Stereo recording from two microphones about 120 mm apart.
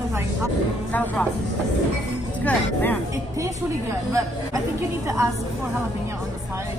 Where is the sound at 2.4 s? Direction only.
10° left (ahead or behind).